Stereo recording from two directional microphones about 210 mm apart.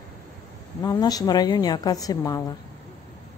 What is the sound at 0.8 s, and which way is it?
A woman's voice, 15° left (ahead or behind).